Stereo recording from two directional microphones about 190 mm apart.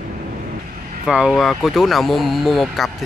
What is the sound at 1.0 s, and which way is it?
Speech, 5° right (ahead or behind).